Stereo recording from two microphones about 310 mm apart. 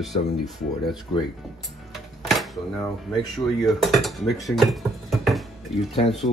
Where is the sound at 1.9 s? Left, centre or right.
Centre.